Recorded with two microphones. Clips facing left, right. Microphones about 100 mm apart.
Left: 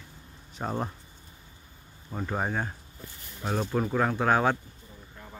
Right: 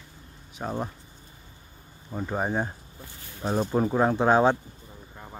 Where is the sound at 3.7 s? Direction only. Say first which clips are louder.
Right 4 dB; 20° right (ahead or behind).